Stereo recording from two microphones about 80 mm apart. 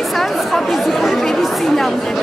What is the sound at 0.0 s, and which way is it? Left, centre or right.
Chatter, centre.